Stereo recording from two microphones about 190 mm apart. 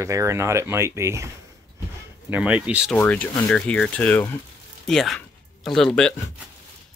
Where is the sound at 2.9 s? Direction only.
10° left (ahead or behind).